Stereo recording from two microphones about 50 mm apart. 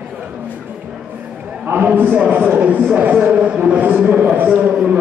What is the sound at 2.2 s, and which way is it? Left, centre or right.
A man's voice, right.